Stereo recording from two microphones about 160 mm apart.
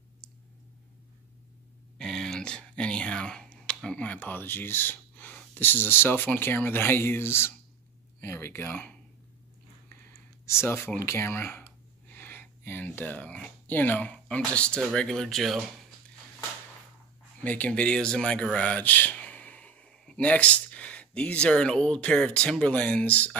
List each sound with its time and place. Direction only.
2.0 s speech: centre (ahead or behind)
10.4 s speech: 15° left (ahead or behind); by 15.6 s centre (ahead or behind)
17.4 s speech: 10° left (ahead or behind)